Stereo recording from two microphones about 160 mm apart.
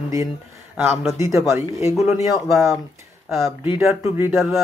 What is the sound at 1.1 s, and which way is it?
Speech, 20° right (ahead or behind).